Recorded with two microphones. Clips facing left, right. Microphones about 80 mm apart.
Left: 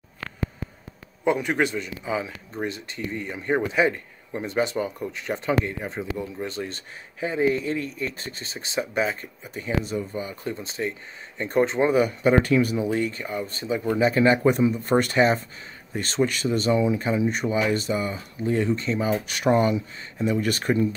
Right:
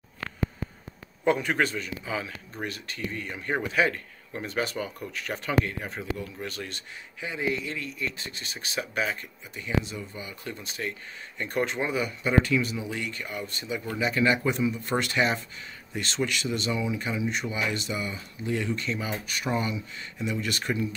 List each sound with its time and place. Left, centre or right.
1.2 s speech: centre; by 9.3 s left
9.4 s speech: left
10.4 s speech: left
11.9 s speech: left
13.5 s speech: left
13.7 s speech: left
14.0 s speech: left
19.4 s speech: left